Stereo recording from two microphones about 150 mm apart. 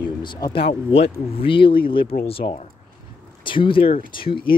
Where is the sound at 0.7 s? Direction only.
40° left (ahead or behind).